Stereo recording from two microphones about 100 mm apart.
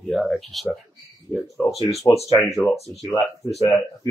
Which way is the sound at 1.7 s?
90° left.